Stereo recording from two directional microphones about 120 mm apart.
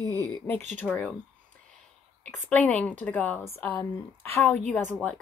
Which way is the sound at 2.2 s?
10° left (ahead or behind).